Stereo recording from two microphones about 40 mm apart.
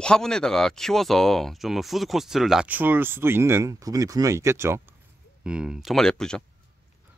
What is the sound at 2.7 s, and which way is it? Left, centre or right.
Speech, right.